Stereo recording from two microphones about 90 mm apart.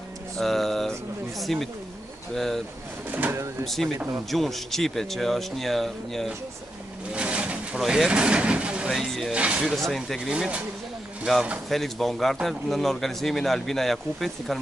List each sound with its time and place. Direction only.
0.4 s speech: 5° left (ahead or behind)
3.1 s speech: 20° right (ahead or behind)
3.6 s speech: centre (ahead or behind)
7.1 s vehicle: 10° right (ahead or behind)
8.9 s speech: centre (ahead or behind)
9.3 s speech: 15° right (ahead or behind)
11.7 s speech: centre (ahead or behind)